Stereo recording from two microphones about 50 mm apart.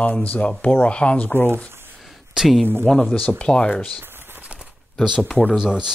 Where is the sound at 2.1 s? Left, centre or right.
Centre.